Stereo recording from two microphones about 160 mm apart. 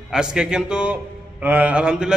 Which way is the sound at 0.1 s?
5° right (ahead or behind).